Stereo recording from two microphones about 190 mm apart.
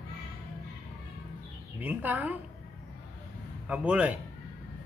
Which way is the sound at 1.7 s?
10° right (ahead or behind).